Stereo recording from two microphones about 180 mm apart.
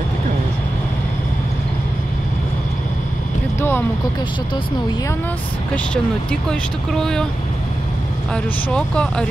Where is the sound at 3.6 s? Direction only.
10° left (ahead or behind).